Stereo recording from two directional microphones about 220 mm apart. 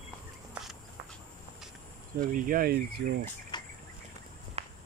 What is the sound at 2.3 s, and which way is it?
Speech, 40° right (ahead or behind).